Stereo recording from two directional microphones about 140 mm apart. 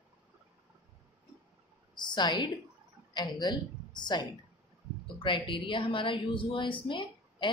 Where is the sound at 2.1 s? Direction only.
35° left (ahead or behind).